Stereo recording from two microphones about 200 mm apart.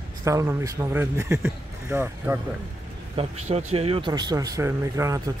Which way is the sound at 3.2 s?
30° right (ahead or behind).